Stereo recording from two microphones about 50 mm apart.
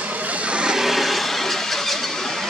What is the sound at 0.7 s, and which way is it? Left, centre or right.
Squeal, centre.